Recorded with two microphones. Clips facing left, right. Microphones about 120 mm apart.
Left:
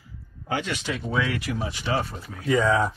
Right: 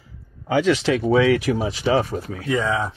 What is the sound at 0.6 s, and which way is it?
Speech, 90° right.